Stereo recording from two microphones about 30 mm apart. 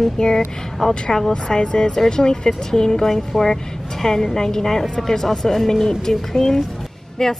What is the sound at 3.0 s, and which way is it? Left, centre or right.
A woman's voice, centre.